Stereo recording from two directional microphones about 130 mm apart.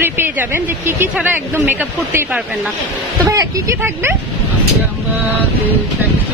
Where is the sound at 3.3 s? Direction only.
25° right (ahead or behind).